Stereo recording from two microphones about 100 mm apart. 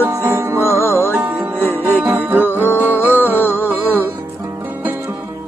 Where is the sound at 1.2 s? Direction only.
20° right (ahead or behind).